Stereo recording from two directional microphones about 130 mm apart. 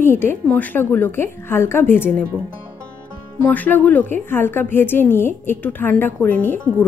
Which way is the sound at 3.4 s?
10° left (ahead or behind).